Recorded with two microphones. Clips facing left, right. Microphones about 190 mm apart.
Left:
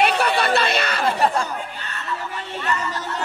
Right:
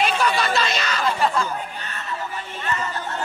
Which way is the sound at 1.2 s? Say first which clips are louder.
Left 1 dB; 35° left (ahead or behind).